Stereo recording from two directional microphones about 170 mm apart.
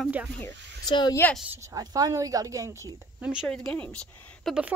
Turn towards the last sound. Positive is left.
turn(degrees=5)  # may be behind; listen again after turning